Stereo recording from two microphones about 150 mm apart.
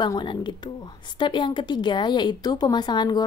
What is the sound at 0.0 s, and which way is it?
A woman's voice, 30° left (ahead or behind).